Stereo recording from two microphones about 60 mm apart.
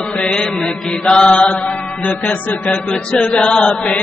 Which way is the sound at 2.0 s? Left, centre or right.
Left.